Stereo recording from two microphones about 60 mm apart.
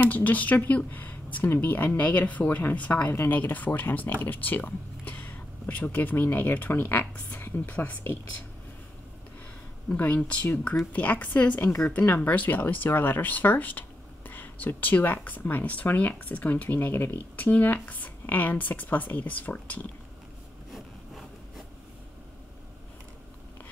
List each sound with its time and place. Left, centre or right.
0.1 s speech: left
3.1 s speech: left
9.9 s speech: left
20.7 s a sound: centre